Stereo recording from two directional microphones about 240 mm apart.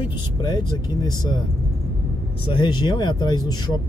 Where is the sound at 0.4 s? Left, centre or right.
Centre.